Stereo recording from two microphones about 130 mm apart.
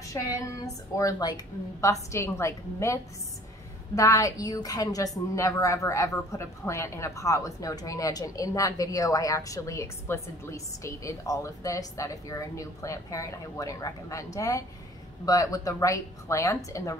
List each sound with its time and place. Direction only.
0.0 s a woman's voice: 25° left (ahead or behind)